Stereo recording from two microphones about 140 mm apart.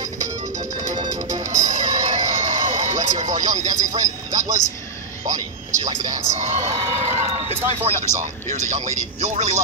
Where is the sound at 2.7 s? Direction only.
60° right (ahead or behind).